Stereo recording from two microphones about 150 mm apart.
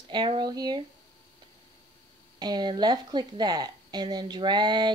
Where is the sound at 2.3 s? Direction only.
30° right (ahead or behind).